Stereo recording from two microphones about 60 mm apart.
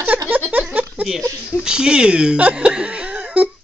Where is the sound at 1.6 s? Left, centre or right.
Centre.